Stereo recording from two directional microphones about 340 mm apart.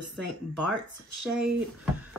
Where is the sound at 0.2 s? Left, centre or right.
Left.